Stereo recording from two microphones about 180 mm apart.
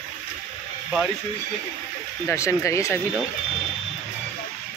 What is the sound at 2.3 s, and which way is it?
Speech, 15° left (ahead or behind).